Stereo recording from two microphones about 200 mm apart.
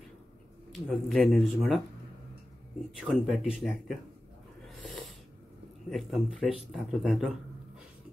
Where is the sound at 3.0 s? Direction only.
5° right (ahead or behind).